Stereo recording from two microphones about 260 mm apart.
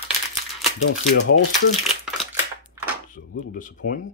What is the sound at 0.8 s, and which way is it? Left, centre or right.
Speech, left.